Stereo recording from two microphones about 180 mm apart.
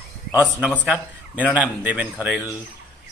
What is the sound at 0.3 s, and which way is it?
A man's voice, 10° right (ahead or behind).